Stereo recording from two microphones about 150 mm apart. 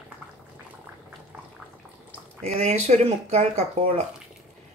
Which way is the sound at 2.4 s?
50° right (ahead or behind).